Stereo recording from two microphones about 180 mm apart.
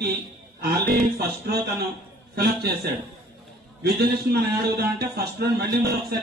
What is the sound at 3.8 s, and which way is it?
A man's voice, 60° right (ahead or behind).